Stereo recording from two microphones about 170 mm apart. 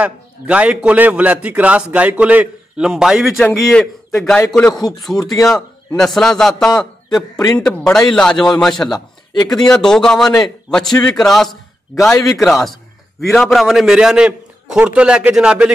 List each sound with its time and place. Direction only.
0.0 s a man's voice: 10° right (ahead or behind)
8.9 s speech: 20° left (ahead or behind)
9.7 s a man's voice: 5° left (ahead or behind)
11.0 s a man's voice: 20° left (ahead or behind)
12.4 s a man's voice: centre (ahead or behind)